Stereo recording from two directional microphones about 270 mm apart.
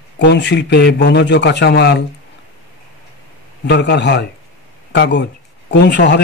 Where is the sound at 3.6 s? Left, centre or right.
Left.